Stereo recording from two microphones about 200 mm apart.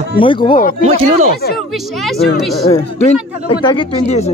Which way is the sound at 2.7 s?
30° left (ahead or behind).